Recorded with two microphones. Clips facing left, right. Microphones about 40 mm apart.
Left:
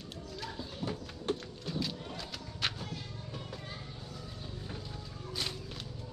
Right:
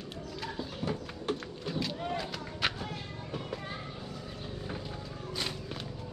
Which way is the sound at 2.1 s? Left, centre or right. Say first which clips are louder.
Right 6 dB; centre.